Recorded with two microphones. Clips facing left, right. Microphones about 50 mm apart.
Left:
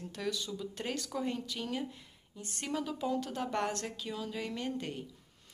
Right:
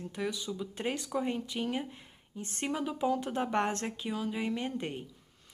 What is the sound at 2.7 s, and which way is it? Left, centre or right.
Speech, right.